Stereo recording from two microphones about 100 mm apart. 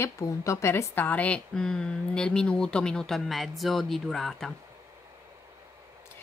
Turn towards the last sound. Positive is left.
turn(degrees=0)  # may be behind; listen again after turning